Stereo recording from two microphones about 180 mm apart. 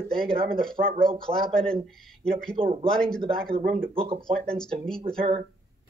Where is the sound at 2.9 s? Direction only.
5° left (ahead or behind).